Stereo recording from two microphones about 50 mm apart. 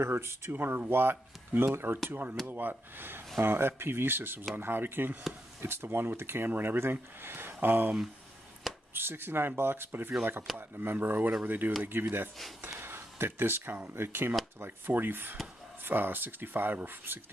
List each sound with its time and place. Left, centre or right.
0.0 s speech: right
0.5 s speech: right
8.9 s speech: right
12.6 s a sound: right
13.8 s speech: right